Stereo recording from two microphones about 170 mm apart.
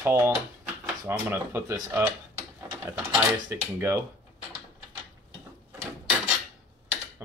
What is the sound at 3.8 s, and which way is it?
Speech, 15° right (ahead or behind).